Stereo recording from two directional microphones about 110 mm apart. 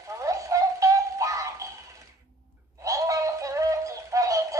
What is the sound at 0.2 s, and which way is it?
Music, 30° right (ahead or behind).